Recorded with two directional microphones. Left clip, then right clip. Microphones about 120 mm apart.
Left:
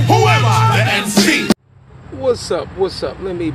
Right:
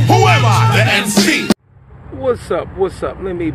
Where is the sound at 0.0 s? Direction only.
Centre (ahead or behind).